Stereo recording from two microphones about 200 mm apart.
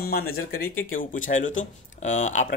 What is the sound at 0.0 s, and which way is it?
Speech, 50° left (ahead or behind).